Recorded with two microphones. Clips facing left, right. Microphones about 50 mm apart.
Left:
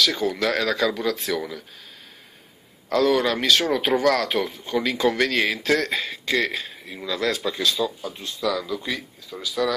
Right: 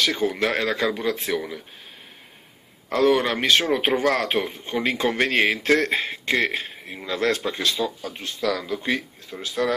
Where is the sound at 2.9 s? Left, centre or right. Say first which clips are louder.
Even; right.